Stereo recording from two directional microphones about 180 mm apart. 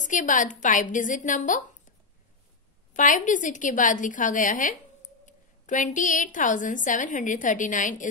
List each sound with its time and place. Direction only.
0.0 s a woman's voice: 45° left (ahead or behind)
2.9 s a woman's voice: 45° left (ahead or behind)